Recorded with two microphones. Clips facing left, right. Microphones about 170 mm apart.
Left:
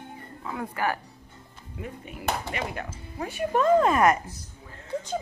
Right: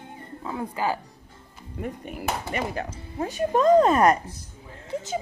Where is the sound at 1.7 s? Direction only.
50° right (ahead or behind).